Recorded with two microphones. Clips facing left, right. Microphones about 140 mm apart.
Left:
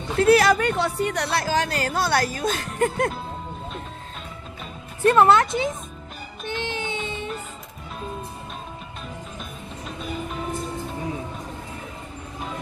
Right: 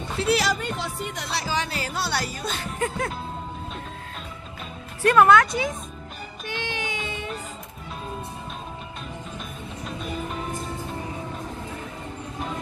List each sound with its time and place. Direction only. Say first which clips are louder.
0.2 s speech: left 7 dB; 50° left (ahead or behind)
5.0 s speech: even; 25° left (ahead or behind)
6.4 s music: left 3 dB; 25° left (ahead or behind)